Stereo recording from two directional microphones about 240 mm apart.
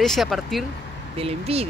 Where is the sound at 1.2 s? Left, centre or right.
Right.